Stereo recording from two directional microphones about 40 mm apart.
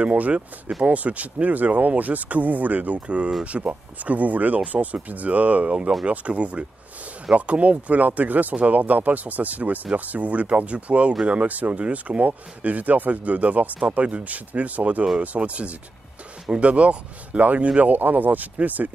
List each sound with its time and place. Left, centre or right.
0.0 s speech: right
4.6 s speech: right
5.1 s speech: right